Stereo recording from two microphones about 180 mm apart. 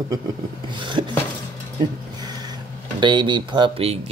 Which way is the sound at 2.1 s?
25° right (ahead or behind).